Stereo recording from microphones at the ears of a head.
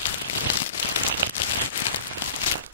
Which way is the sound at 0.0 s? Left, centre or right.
Left.